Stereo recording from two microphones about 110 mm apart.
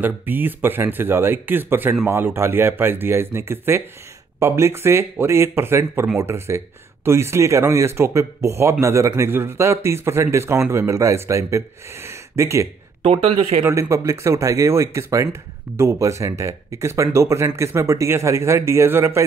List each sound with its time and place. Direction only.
0.0 s speech: 15° right (ahead or behind)
13.0 s speech: 75° right (ahead or behind)
13.7 s speech: 25° right (ahead or behind)